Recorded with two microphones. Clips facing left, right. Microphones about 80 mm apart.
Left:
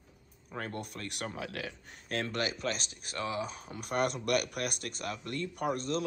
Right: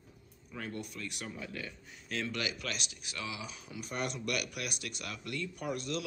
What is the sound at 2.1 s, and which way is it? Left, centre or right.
Speech, left.